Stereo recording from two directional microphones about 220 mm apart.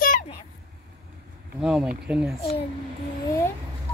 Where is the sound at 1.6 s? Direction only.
5° right (ahead or behind).